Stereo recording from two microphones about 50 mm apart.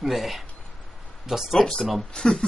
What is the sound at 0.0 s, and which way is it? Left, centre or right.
A man's voice, centre.